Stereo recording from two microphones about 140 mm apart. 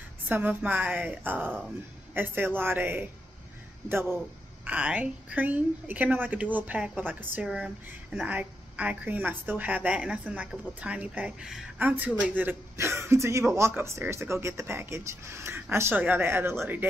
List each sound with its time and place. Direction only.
0.3 s a woman's voice: 15° right (ahead or behind)